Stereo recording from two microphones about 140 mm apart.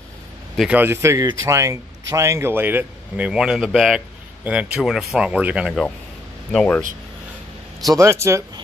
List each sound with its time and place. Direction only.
0.6 s speech: 10° right (ahead or behind)
6.5 s speech: 5° left (ahead or behind)
7.9 s speech: 20° right (ahead or behind)